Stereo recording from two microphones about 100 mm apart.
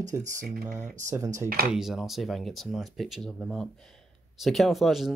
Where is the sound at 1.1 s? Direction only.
30° right (ahead or behind).